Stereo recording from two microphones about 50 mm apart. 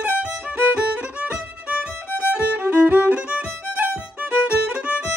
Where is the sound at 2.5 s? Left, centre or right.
Right.